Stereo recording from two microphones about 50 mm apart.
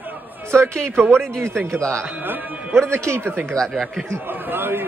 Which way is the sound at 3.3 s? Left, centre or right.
Right.